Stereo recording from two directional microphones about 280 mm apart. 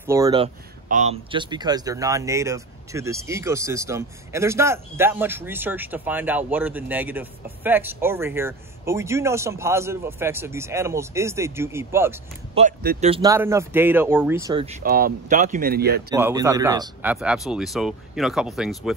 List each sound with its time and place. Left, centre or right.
0.0 s speech: centre
0.8 s speech: right; by 12.2 s centre
12.5 s speech: right
16.1 s speech: centre